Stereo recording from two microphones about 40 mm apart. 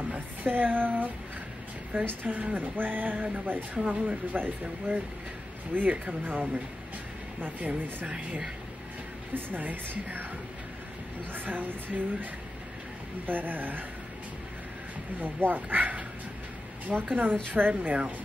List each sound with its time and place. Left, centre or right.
0.1 s speech: right
3.7 s speech: right
7.6 s speech: right
9.3 s speech: right
11.3 s speech: right
13.3 s speech: right
15.1 s speech: right
17.1 s speech: right